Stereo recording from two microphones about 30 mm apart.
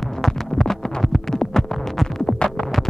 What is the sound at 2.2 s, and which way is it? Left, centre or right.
Music, left.